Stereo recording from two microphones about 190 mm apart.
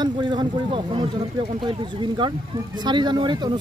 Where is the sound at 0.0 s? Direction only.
25° right (ahead or behind).